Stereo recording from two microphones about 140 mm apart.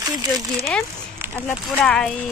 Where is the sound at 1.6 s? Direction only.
5° left (ahead or behind).